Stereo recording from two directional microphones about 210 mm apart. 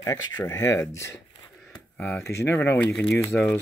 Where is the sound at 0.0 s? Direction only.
15° left (ahead or behind).